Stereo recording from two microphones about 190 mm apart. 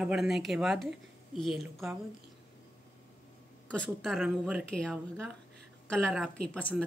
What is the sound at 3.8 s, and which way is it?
Speech, centre (ahead or behind).